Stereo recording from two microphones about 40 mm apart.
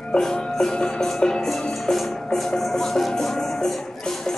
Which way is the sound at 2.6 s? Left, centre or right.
Centre.